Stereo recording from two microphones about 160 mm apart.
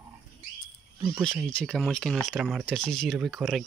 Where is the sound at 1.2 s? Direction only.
5° left (ahead or behind).